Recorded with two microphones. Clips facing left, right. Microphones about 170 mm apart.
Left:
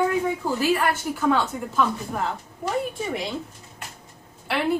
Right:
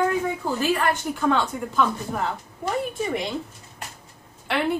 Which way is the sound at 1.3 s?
5° left (ahead or behind).